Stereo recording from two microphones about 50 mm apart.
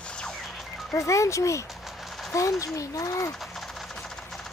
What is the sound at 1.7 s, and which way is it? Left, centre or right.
Vehicle, centre.